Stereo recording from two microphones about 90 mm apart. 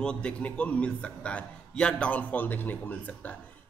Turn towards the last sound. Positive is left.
turn(degrees=20)  # may be behind; listen again after turning